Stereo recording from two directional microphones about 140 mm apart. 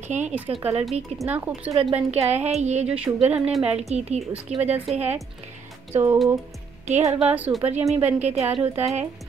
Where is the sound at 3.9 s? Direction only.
50° right (ahead or behind).